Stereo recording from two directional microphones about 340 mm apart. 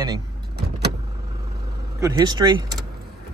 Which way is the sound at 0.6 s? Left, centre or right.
Right.